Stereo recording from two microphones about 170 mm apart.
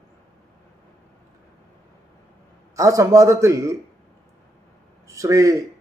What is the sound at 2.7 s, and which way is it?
A man's voice, 20° right (ahead or behind).